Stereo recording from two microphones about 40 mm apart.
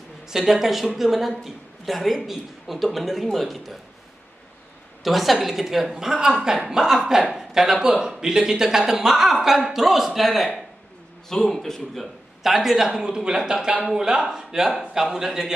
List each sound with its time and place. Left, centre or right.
0.3 s speech: centre
5.0 s a man's voice: centre
12.0 s speech: centre